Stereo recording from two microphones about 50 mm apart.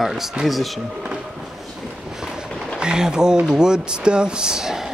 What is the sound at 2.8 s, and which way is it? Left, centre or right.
Speech, centre.